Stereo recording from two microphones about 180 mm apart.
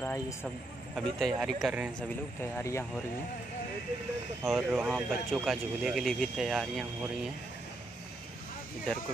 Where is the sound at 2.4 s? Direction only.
15° left (ahead or behind).